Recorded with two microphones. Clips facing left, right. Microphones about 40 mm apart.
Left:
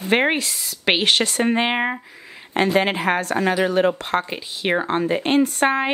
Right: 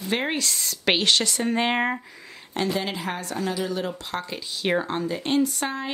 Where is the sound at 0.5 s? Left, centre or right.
Centre.